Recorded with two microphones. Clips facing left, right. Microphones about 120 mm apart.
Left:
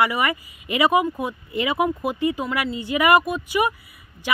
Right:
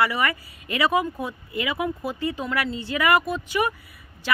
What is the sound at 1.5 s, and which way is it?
Speech, 25° left (ahead or behind).